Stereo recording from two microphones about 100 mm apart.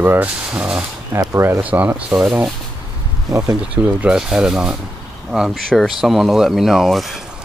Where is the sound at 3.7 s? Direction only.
10° right (ahead or behind).